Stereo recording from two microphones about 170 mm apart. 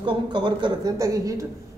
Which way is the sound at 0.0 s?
25° right (ahead or behind).